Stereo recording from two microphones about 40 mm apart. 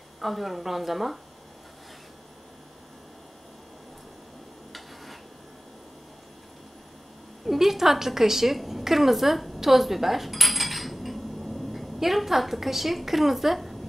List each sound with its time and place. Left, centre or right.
0.2 s a woman's voice: centre
4.7 s a sound: centre
7.4 s a woman's voice: centre